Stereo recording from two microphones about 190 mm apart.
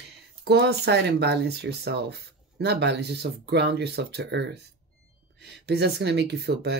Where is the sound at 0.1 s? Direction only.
60° right (ahead or behind).